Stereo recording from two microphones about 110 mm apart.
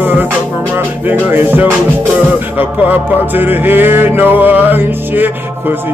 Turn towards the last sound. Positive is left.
turn(degrees=-15)  # may be behind; listen again after turning